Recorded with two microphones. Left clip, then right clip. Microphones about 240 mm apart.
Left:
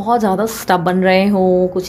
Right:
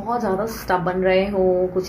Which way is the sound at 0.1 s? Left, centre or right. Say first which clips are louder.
Left 7 dB; left.